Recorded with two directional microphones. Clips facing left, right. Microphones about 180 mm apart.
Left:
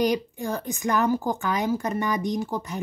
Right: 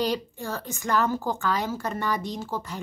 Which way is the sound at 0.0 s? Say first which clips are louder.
Left 4 dB; 15° left (ahead or behind).